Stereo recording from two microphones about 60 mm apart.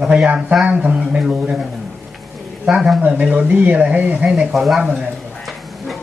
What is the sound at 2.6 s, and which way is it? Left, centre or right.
Speech, centre.